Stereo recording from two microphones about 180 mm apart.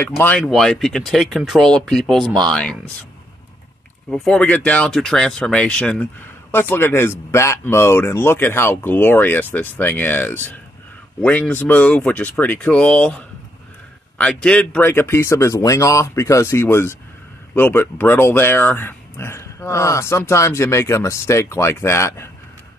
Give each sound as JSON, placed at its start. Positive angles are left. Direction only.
{"t": 0.2, "sound": "speech", "side_deg": 10}
{"t": 4.1, "sound": "speech", "side_deg": 5}